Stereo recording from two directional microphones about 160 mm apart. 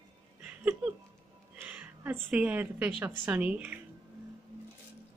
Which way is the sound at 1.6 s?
10° right (ahead or behind).